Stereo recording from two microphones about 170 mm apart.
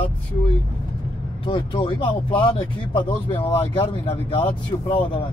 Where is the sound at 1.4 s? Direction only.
30° left (ahead or behind).